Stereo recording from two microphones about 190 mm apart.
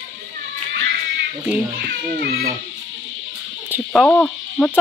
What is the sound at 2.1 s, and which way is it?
Speech, 60° right (ahead or behind).